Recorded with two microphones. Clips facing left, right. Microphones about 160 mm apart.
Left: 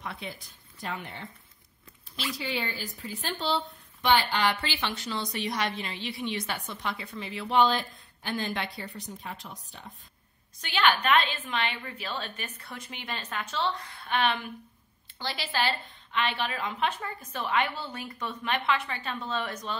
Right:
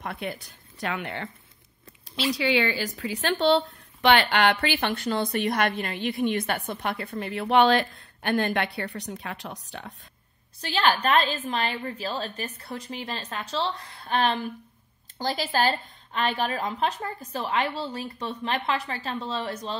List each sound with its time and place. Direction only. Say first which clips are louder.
0.0 s speech: right 6 dB; 60° right (ahead or behind); by 1.3 s 85° right
2.3 s a woman's voice: right 10 dB; 85° right
10.6 s a woman's voice: right 2 dB; 35° right (ahead or behind)